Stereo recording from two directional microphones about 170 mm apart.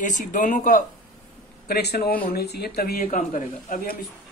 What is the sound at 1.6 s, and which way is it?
Speech, 70° left (ahead or behind).